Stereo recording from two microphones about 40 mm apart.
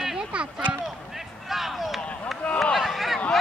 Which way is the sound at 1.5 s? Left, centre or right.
Centre.